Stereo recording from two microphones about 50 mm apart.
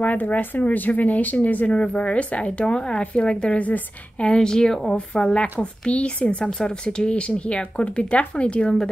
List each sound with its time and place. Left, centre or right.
0.0 s speech: left
4.4 s speech: centre